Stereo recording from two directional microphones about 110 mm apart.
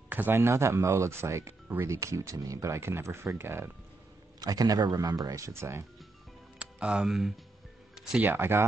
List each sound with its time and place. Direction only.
0.1 s speech: 20° right (ahead or behind)
4.4 s speech: 35° right (ahead or behind)
6.6 s speech: 10° right (ahead or behind)
7.9 s music: 5° right (ahead or behind)
8.3 s speech: 20° right (ahead or behind)